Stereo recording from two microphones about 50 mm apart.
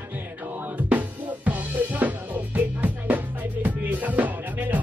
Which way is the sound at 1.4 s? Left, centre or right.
Right.